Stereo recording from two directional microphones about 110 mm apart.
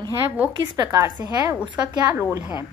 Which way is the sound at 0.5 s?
35° right (ahead or behind).